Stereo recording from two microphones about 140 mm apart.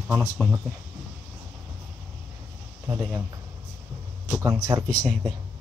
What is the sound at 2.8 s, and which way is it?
Speech, 15° right (ahead or behind).